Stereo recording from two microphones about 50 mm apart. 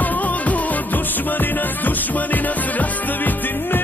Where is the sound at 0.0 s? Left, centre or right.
Left.